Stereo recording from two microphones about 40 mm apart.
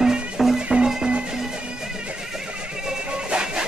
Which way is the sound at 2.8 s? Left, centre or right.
Right.